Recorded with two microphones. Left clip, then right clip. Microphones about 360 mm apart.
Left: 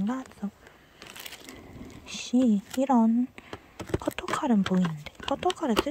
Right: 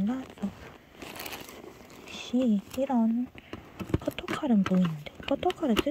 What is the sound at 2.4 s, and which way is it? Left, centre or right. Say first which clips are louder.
Speech: left 2 dB; centre.